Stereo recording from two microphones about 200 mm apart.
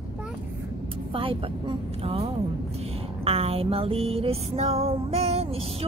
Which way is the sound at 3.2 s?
30° right (ahead or behind).